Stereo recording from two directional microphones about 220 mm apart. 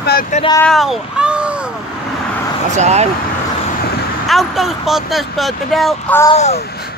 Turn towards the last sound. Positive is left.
turn(degrees=30)  # may be behind; listen again after turning